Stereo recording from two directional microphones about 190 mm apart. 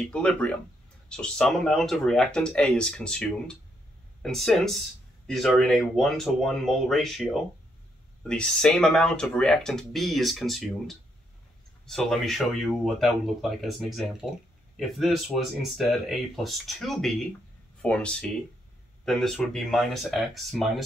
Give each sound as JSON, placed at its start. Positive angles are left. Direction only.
{"t": 0.0, "sound": "speech", "side_deg": 5}